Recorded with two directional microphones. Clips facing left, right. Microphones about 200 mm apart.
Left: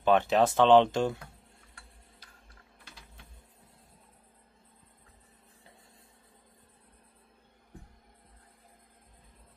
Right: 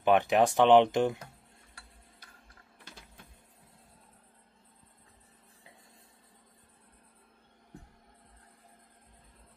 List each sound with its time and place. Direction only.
0.0 s speech: 15° right (ahead or behind)